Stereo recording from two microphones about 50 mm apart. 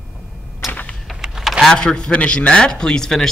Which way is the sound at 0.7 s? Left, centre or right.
Left.